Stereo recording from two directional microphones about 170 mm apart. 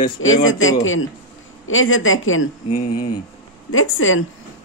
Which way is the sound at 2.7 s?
45° left (ahead or behind).